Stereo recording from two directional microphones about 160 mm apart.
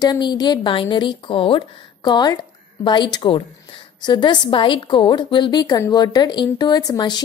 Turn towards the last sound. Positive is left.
turn(degrees=25)  # may be behind; listen again after turning